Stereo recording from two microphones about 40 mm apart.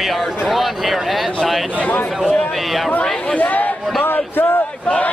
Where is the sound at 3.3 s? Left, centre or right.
Left.